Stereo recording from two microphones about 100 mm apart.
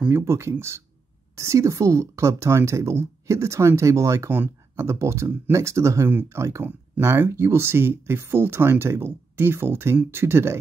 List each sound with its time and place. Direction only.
0.1 s speech: 25° right (ahead or behind)